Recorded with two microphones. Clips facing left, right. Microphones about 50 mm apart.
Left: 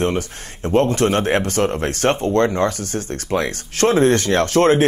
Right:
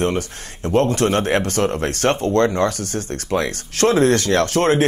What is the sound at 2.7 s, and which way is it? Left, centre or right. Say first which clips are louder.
Speech: even; right.